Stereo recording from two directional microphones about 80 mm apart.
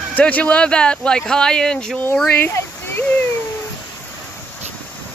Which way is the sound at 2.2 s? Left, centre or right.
Left.